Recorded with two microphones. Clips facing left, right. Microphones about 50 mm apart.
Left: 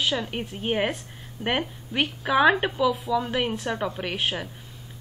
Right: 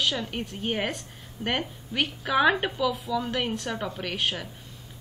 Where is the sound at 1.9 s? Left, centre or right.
Centre.